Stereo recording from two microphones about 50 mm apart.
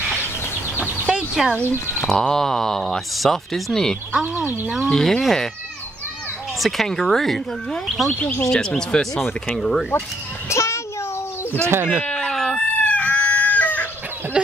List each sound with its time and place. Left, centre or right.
1.1 s a sound: centre
1.7 s speech: left
2.0 s speech: centre
4.1 s speech: right
4.8 s speech: centre
6.6 s speech: centre
8.2 s speech: left
8.5 s speech: centre
10.5 s a sound: left
12.1 s chicken: centre
12.5 s chicken: left
14.3 s speech: right